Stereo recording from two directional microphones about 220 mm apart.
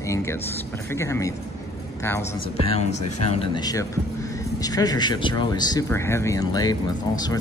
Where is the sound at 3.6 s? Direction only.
15° left (ahead or behind).